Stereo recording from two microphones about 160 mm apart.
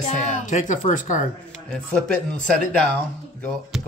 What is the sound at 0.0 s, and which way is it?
A woman's voice, 50° left (ahead or behind).